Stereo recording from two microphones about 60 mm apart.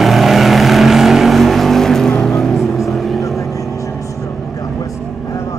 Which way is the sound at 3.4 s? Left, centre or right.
Left.